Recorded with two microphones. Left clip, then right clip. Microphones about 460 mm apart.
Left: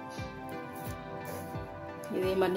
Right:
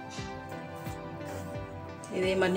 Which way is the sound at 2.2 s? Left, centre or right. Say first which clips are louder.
Right 2 dB; left.